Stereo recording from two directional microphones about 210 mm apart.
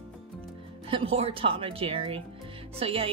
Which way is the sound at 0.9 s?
25° right (ahead or behind).